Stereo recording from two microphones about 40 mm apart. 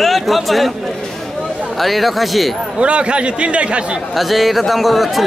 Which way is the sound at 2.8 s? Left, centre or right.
Right.